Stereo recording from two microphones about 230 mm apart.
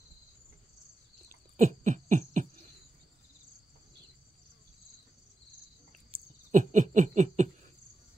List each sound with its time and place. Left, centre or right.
1.6 s owl: right
6.5 s owl: right